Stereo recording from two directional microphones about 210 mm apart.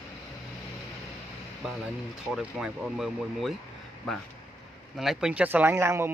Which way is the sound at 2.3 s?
5° right (ahead or behind).